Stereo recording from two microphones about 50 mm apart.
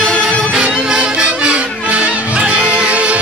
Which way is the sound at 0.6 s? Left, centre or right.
Centre.